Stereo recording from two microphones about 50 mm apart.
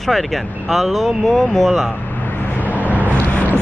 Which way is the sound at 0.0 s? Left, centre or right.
Centre.